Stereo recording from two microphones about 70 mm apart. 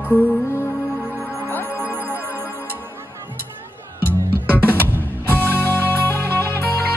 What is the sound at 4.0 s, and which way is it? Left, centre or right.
Music, right.